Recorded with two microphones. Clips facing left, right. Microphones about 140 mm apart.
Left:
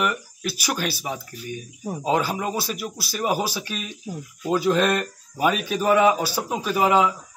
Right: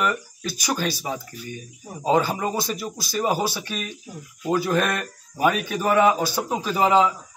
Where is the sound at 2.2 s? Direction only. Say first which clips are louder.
Right 1 dB; 5° left (ahead or behind).